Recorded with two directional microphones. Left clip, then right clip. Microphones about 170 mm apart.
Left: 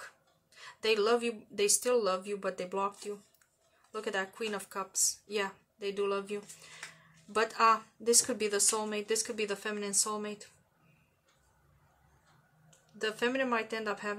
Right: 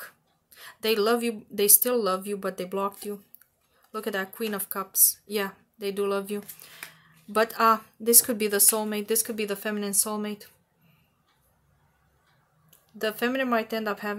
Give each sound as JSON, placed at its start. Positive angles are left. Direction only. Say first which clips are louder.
{"t": 0.0, "sound": "speech", "louder": "right 5 dB", "side_deg": -45}
{"t": 12.6, "sound": "speech", "louder": "right 6 dB", "side_deg": -45}